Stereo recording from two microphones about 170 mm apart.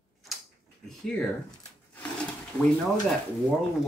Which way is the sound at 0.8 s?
5° left (ahead or behind).